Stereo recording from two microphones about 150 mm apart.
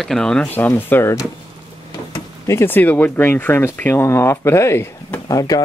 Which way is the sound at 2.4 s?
15° left (ahead or behind).